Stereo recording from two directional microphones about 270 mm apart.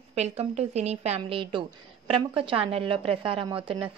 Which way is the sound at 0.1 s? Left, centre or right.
Right.